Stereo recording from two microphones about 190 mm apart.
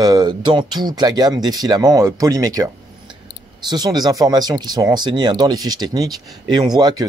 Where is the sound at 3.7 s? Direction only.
20° right (ahead or behind).